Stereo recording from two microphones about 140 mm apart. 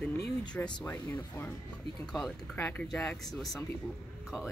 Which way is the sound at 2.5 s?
15° left (ahead or behind).